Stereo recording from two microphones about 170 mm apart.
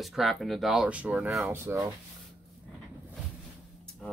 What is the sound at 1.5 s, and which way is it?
Speech, 15° right (ahead or behind).